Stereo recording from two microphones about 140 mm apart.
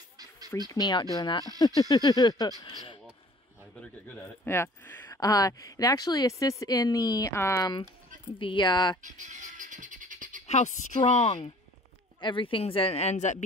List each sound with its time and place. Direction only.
0.7 s speech: 25° left (ahead or behind)
3.8 s speech: 15° left (ahead or behind)
8.4 s speech: 35° left (ahead or behind)
9.0 s bird: 60° right (ahead or behind)
10.4 s a woman's voice: 55° left (ahead or behind)
12.2 s speech: 35° left (ahead or behind); by 13.4 s 55° left (ahead or behind)